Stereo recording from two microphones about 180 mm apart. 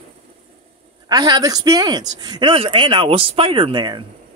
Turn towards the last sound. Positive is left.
turn(degrees=-25)  # may be behind; listen again after turning